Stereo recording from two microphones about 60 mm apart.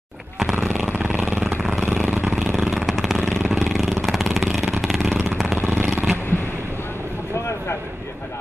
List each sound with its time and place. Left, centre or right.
0.8 s vehicle: right
2.5 s vehicle: centre
5.6 s vehicle: right